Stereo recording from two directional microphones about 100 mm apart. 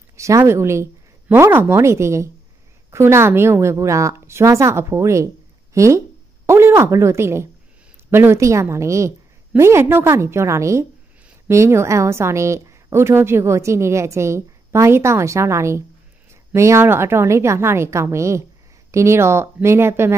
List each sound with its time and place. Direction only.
0.2 s a woman's voice: 30° right (ahead or behind)